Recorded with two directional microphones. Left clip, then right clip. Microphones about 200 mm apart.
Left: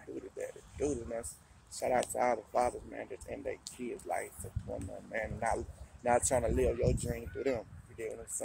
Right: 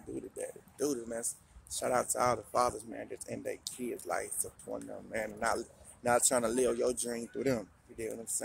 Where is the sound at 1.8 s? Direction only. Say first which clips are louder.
Even; 15° right (ahead or behind).